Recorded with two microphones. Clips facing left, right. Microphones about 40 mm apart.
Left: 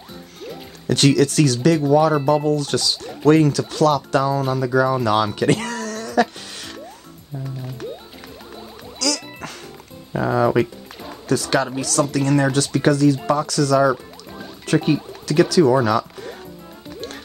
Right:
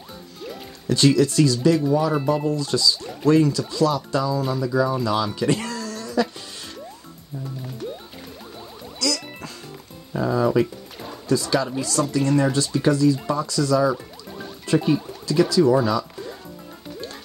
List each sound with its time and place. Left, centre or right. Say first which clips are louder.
0.8 s speech: left 2 dB; left
9.0 s music: left 2 dB; left
10.1 s speech: left 2 dB; left
11.2 s speech: left 2 dB; left
12.0 s speech: left 4 dB; left
12.4 s speech: left 2 dB; left
14.7 s speech: left 2 dB; left